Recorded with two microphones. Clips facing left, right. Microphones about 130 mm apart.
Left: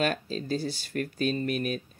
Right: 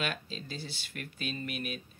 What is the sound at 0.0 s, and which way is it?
Speech, 40° left (ahead or behind).